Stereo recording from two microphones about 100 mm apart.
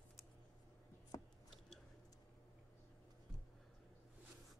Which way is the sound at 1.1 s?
40° left (ahead or behind).